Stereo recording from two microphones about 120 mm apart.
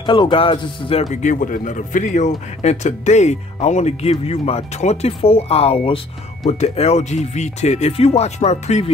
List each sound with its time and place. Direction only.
0.0 s speech: 45° left (ahead or behind)
1.1 s speech: 90° left; by 5.9 s 55° left (ahead or behind)
6.6 s speech: 65° left (ahead or behind)